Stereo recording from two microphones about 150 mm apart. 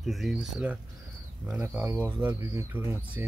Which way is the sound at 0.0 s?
Centre (ahead or behind).